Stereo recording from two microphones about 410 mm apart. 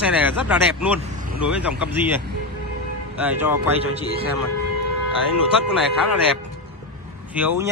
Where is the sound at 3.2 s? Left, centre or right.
Centre.